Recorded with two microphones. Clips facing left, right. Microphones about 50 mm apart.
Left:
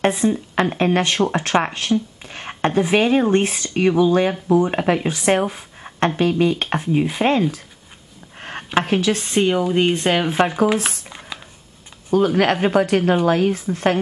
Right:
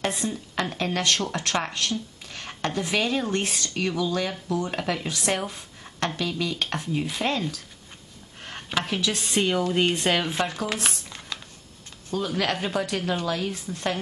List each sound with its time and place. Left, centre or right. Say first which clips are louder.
0.1 s speech: left 10 dB; left
8.4 s a sound: left 7 dB; left
8.7 s a woman's voice: left 8 dB; left
9.3 s speech: left 5 dB; centre
10.7 s squish: left 8 dB; centre
12.1 s a woman's voice: left 10 dB; left